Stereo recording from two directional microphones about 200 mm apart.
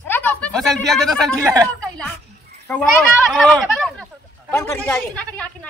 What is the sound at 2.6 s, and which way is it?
A man's voice, 10° left (ahead or behind).